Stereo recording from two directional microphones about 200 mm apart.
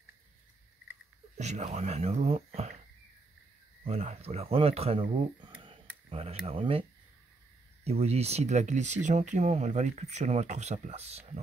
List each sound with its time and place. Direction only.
1.4 s speech: 35° right (ahead or behind)
3.8 s speech: 30° right (ahead or behind)
7.8 s speech: 30° right (ahead or behind)